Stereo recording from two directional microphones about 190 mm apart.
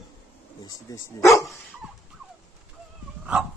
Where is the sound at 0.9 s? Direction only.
15° left (ahead or behind).